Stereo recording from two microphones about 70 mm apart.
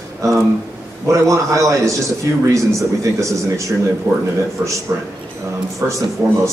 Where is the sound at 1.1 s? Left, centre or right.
Right.